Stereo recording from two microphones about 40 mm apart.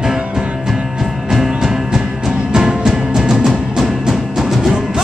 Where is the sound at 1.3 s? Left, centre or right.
Centre.